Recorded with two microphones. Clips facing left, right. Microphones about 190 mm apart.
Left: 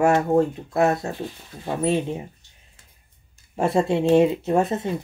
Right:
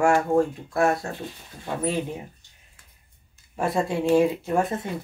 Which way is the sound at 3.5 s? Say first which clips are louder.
Left 4 dB; 25° left (ahead or behind).